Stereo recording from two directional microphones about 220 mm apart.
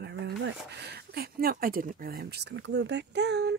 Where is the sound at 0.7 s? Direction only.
50° right (ahead or behind).